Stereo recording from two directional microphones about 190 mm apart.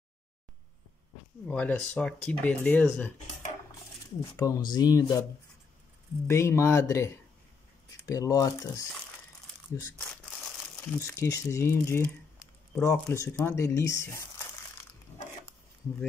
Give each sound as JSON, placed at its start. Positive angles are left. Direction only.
{"t": 1.5, "sound": "speech", "side_deg": 10}
{"t": 4.4, "sound": "speech", "side_deg": 20}
{"t": 6.2, "sound": "speech", "side_deg": 15}
{"t": 10.8, "sound": "speech", "side_deg": 15}